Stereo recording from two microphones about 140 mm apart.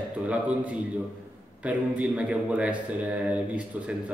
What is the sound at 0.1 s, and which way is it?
A man's voice, 10° right (ahead or behind).